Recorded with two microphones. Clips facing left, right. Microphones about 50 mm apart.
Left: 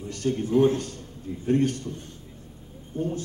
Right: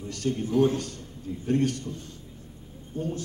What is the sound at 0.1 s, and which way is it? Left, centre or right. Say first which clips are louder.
A man's voice: left 3 dB; left.